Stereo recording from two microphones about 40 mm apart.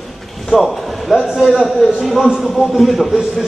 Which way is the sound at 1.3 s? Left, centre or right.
Centre.